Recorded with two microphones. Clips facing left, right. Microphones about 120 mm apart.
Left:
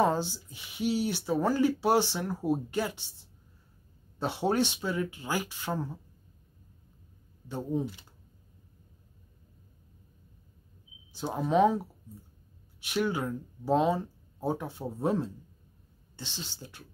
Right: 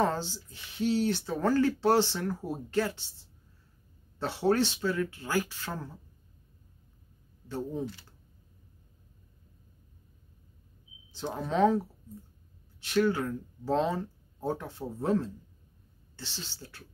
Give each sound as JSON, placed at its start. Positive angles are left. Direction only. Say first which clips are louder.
{"t": 0.0, "sound": "speech", "louder": "left 2 dB", "side_deg": 15}
{"t": 7.4, "sound": "speech", "louder": "left 2 dB", "side_deg": 15}
{"t": 11.1, "sound": "speech", "louder": "left 2 dB", "side_deg": 15}
{"t": 12.8, "sound": "speech", "louder": "right 3 dB", "side_deg": 15}